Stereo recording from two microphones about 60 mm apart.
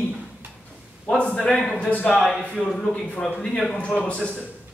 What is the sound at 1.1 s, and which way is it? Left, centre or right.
A man's voice, centre.